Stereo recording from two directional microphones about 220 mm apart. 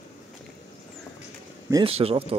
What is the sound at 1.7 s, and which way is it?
Speech, 20° right (ahead or behind).